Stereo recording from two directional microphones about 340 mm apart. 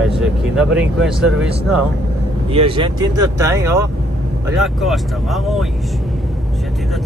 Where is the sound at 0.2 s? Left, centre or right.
Centre.